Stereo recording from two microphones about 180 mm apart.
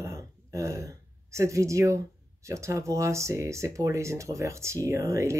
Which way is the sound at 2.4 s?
15° right (ahead or behind).